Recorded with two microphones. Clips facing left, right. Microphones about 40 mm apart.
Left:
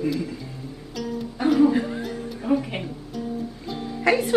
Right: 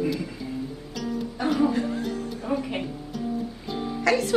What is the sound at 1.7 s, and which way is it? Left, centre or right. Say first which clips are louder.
Music: left 2 dB; centre.